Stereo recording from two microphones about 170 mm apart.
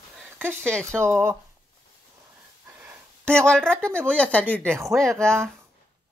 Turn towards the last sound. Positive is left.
turn(degrees=5)  # may be behind; listen again after turning